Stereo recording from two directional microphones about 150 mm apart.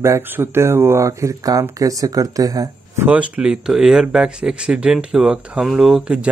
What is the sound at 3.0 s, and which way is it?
Speech, 10° right (ahead or behind).